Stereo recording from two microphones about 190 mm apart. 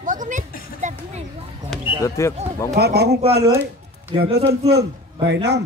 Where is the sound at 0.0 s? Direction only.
45° right (ahead or behind).